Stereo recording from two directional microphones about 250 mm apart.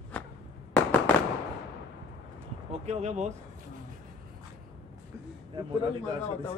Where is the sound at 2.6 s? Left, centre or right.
Right.